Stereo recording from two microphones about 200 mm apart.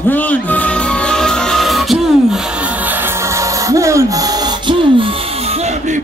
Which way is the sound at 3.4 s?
15° right (ahead or behind).